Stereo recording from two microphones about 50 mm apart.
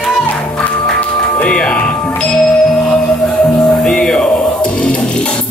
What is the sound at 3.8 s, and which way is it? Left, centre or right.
Music, centre.